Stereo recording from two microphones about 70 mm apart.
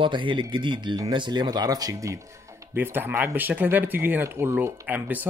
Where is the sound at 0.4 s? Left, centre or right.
Right.